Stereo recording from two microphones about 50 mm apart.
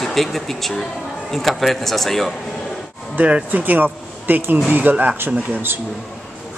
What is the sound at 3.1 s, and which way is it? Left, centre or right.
Speech, right.